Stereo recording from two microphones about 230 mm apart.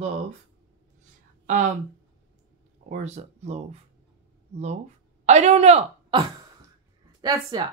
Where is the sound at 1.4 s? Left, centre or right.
Right.